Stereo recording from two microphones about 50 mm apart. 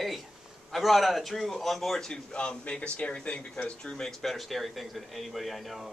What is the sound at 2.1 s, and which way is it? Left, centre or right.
Speech, centre.